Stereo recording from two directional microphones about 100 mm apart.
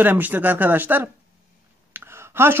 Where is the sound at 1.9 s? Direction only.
25° right (ahead or behind).